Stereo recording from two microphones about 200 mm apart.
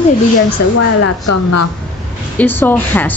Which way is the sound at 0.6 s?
55° left (ahead or behind).